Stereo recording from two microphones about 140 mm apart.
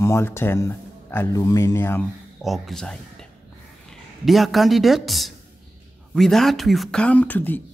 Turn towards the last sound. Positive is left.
turn(degrees=15)  # may be behind; listen again after turning